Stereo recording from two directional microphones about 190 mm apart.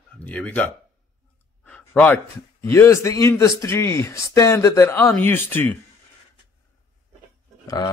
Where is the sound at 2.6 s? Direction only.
15° left (ahead or behind).